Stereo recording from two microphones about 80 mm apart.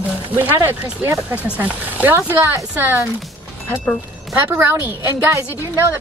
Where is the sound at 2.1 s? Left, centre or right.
Right.